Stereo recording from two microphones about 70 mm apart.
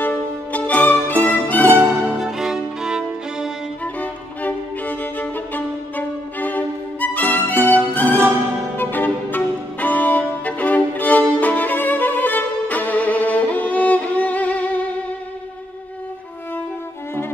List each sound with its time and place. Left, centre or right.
0.0 s music: left
1.6 s music: right
2.1 s music: centre
3.8 s music: left
7.5 s music: right
8.7 s violin: left